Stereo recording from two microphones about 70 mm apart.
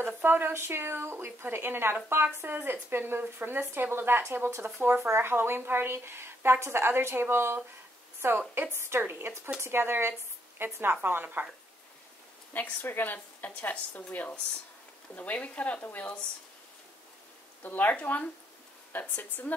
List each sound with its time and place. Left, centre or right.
0.0 s speech: right
12.5 s a woman's voice: left
17.6 s a woman's voice: left